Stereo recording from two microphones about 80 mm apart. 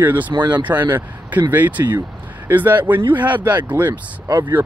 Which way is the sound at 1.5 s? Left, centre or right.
Right.